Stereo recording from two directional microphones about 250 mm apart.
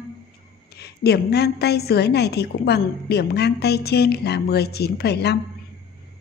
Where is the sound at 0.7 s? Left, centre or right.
Left.